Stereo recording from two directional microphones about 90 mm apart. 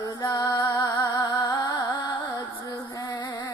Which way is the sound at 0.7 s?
45° left (ahead or behind).